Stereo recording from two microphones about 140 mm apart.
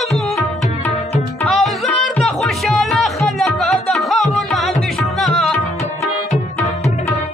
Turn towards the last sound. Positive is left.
turn(degrees=0)  # may be behind; listen again after turning